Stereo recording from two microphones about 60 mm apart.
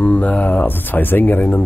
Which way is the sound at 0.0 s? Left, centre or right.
Left.